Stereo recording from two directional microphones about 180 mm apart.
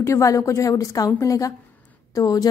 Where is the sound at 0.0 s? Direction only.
15° left (ahead or behind).